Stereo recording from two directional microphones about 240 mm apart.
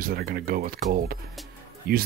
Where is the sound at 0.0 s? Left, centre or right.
Right.